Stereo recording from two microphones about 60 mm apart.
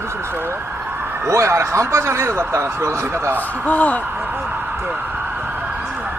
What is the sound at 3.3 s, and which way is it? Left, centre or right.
Speech, left.